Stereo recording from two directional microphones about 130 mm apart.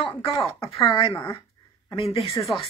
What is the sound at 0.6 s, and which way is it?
Speech, 25° left (ahead or behind).